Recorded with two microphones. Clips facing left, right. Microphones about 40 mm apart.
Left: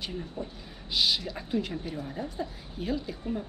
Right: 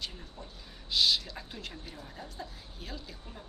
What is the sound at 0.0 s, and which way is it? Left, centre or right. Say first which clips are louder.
A woman's voice: left 7 dB; centre.